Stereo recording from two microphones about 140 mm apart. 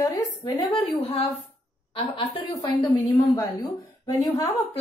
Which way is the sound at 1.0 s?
45° left (ahead or behind).